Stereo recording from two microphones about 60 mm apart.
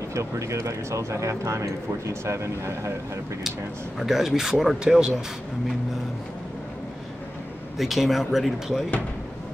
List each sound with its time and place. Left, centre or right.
0.1 s speech: right
4.0 s speech: centre
7.7 s speech: centre